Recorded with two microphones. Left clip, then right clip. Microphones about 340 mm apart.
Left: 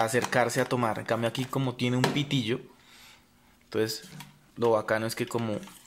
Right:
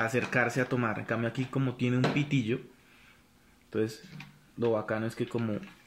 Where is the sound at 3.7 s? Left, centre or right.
Left.